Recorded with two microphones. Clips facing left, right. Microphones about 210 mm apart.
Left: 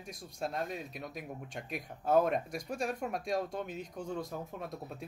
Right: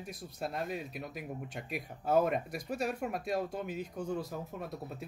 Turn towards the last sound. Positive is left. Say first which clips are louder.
# right 1 dB
turn(degrees=0)  # may be behind; listen again after turning